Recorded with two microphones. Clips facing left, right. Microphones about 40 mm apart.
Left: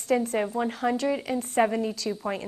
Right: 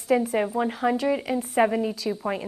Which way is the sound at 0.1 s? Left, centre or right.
Centre.